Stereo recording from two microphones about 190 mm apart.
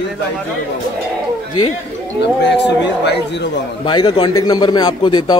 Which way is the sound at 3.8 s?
25° left (ahead or behind).